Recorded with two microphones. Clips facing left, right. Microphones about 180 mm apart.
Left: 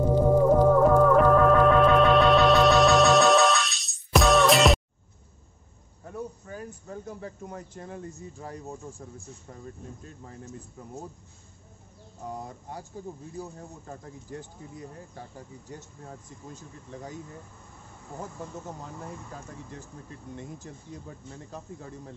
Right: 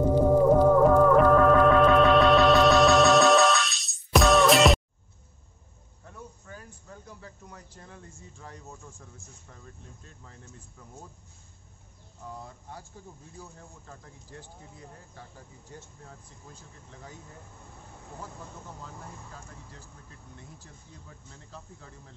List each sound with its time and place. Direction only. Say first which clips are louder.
0.1 s music: even; 15° right (ahead or behind)
0.8 s music: even; centre (ahead or behind)
6.5 s a sound: left 8 dB; 45° left (ahead or behind)
7.4 s speech: left 9 dB; 50° left (ahead or behind)
12.2 s speech: left 5 dB; 40° left (ahead or behind)
16.1 s speech: left 7 dB; 40° left (ahead or behind)
20.5 s speech: left 9 dB; 45° left (ahead or behind)